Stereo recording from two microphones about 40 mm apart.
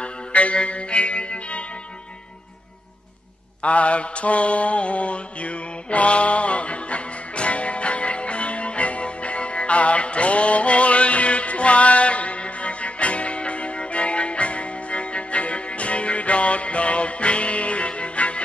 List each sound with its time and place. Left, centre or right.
0.0 s music: left
3.6 s mantra: left